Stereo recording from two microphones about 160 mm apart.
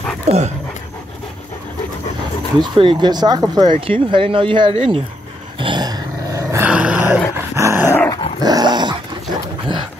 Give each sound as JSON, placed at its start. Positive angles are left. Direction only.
{"t": 0.3, "sound": "dog", "side_deg": -40}
{"t": 2.6, "sound": "speech", "side_deg": -30}
{"t": 5.6, "sound": "dog", "side_deg": -30}
{"t": 6.7, "sound": "dog", "side_deg": -10}
{"t": 7.8, "sound": "dog", "side_deg": 20}
{"t": 8.4, "sound": "dog", "side_deg": -25}